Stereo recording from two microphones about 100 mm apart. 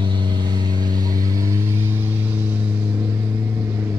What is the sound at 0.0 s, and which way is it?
Vehicle, 50° right (ahead or behind).